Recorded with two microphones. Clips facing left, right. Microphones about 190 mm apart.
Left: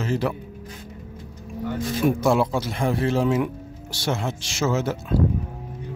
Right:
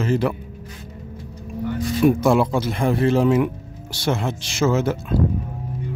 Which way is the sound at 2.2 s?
55° right (ahead or behind).